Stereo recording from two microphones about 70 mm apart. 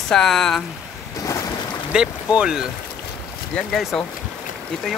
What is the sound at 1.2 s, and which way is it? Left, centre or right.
Boat, left.